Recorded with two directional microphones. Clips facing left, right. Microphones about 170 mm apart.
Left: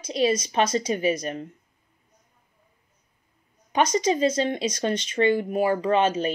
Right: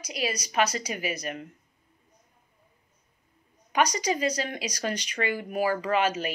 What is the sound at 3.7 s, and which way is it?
A woman's voice, 25° left (ahead or behind).